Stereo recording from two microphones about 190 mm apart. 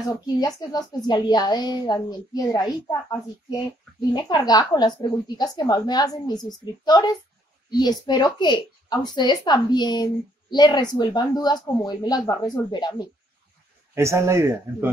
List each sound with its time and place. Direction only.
0.4 s a woman's voice: 20° left (ahead or behind)
13.9 s speech: 15° right (ahead or behind)